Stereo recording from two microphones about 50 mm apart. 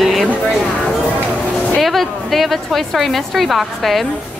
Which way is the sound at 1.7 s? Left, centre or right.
Centre.